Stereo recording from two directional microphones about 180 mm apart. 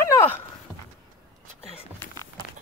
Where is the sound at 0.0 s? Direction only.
15° left (ahead or behind).